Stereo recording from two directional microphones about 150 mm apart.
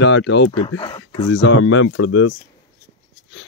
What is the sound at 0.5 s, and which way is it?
Speech, 35° left (ahead or behind).